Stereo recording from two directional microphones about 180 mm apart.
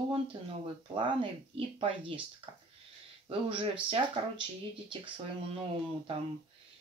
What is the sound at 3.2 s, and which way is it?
Speech, 30° right (ahead or behind).